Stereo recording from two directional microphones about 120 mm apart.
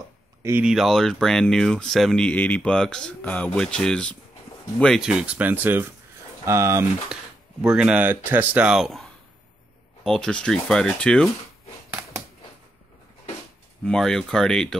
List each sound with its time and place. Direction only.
0.4 s speech: 20° right (ahead or behind)
0.7 s speech: centre (ahead or behind); by 6.9 s 25° right (ahead or behind)
7.6 s speech: 5° right (ahead or behind)
13.8 s speech: 5° left (ahead or behind)